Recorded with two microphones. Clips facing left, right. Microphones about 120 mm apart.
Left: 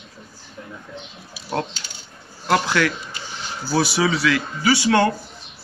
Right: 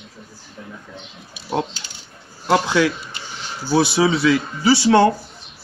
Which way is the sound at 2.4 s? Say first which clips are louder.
Right 2 dB; 20° right (ahead or behind).